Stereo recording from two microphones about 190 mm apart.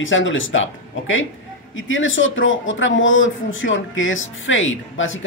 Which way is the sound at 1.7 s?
90° left.